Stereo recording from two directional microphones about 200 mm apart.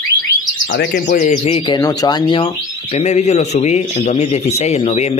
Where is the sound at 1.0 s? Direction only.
40° left (ahead or behind).